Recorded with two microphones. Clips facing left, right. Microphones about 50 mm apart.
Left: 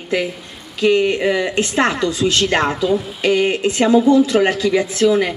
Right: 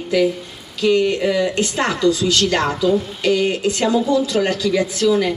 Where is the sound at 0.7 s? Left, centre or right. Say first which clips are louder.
Left 1 dB; left.